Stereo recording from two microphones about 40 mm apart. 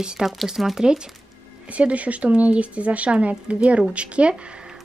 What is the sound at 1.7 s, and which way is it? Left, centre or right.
Speech, right.